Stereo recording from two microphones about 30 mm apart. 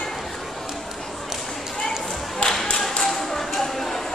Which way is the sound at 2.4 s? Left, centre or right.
Left.